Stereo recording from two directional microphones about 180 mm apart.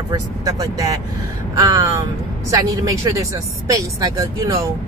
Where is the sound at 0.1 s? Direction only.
20° right (ahead or behind).